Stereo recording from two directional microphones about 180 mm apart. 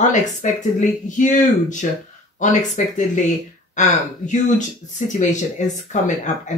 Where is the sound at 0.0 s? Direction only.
40° left (ahead or behind).